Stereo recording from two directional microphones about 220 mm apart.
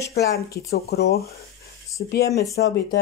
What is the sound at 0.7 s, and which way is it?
Speech, 45° left (ahead or behind).